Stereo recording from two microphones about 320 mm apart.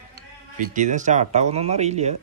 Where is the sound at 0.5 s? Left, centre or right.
Right.